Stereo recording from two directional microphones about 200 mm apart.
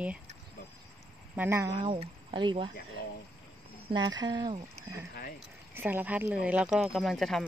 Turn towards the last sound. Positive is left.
turn(degrees=0)  # may be behind; listen again after turning